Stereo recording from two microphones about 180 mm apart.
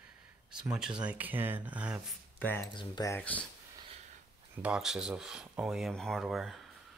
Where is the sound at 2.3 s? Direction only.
10° left (ahead or behind).